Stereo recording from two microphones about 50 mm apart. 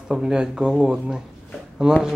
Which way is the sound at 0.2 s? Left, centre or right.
Centre.